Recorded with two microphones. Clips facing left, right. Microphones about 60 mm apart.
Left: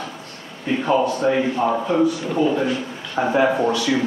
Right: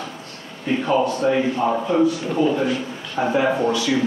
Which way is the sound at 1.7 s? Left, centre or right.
Centre.